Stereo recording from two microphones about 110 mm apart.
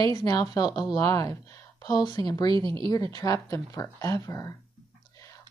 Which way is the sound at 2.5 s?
50° right (ahead or behind).